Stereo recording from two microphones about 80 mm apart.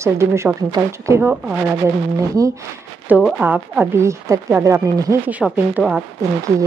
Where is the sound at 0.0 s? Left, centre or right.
Right.